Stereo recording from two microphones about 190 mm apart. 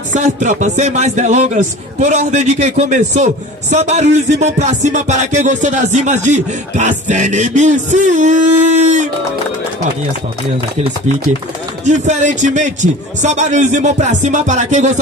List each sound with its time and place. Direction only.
0.1 s music: 40° right (ahead or behind)
11.8 s music: 40° right (ahead or behind)